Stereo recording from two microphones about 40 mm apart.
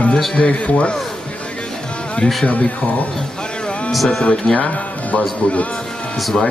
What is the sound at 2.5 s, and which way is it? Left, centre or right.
Speech, left.